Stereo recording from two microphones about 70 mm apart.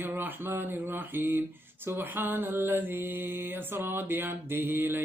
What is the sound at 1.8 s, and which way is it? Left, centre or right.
Mantra, right.